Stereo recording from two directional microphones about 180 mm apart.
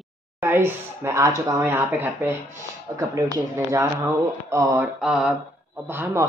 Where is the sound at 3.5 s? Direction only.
15° right (ahead or behind).